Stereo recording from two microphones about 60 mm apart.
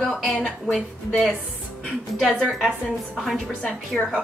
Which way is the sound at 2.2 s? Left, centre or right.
Centre.